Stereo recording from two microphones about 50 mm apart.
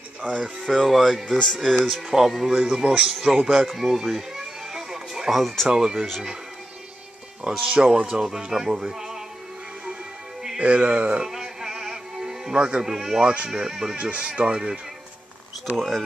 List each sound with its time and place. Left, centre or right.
0.2 s speech: right
0.6 s speech: centre
2.0 s speech: centre
3.4 s a sound: centre
5.7 s speech: centre
7.7 s speech: centre
10.6 s speech: right
11.2 s music: centre
13.2 s speech: right
13.5 s speech: centre
15.7 s speech: centre